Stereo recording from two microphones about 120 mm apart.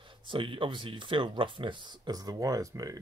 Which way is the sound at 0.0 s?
45° right (ahead or behind).